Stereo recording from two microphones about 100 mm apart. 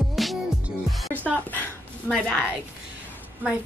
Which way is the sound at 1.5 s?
15° left (ahead or behind).